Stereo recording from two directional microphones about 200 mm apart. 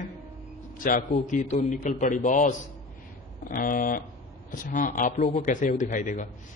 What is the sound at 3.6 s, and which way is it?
A man's voice, 45° left (ahead or behind).